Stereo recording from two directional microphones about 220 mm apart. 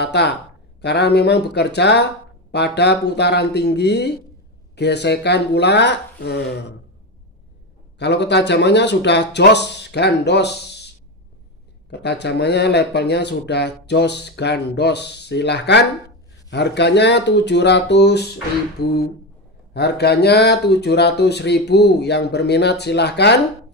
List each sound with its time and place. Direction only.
0.0 s speech: 50° left (ahead or behind)
8.0 s speech: 50° left (ahead or behind)
11.9 s speech: 50° left (ahead or behind)